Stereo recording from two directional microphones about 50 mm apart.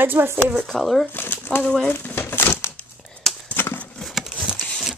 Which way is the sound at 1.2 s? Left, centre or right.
Left.